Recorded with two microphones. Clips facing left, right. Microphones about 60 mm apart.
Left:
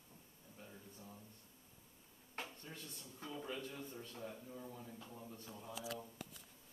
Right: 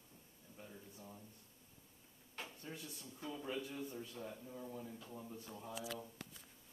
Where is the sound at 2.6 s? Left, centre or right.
Centre.